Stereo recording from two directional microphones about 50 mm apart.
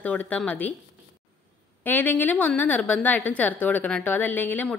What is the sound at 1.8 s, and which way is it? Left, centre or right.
A woman's voice, left.